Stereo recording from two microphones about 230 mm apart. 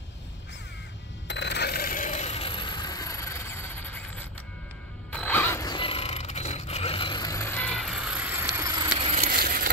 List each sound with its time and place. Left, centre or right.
1.2 s a sound: left; by 4.0 s centre
5.1 s mechanisms: centre
9.2 s vehicle: right